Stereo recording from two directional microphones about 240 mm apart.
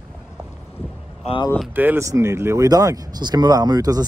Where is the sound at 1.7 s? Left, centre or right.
Centre.